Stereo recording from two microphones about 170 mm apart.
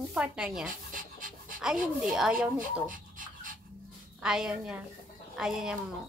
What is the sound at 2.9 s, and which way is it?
Pant, 55° right (ahead or behind).